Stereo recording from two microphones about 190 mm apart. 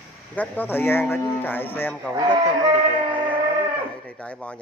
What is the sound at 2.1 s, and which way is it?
Speech, 20° right (ahead or behind).